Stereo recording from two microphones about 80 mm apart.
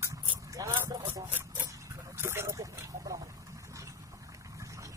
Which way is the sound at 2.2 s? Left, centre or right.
Right.